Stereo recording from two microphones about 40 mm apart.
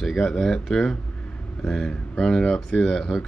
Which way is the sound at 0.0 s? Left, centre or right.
Centre.